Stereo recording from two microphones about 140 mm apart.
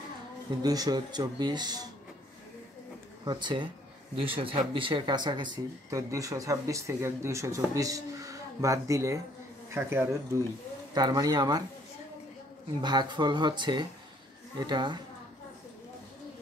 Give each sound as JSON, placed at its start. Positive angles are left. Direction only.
{"t": 0.6, "sound": "speech", "side_deg": -30}
{"t": 3.3, "sound": "speech", "side_deg": -35}
{"t": 11.0, "sound": "speech", "side_deg": -30}
{"t": 12.8, "sound": "speech", "side_deg": -30}